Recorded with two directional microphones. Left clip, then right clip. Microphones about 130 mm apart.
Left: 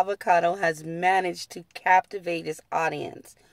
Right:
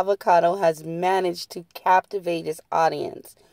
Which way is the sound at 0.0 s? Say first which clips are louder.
Right 3 dB; 25° right (ahead or behind).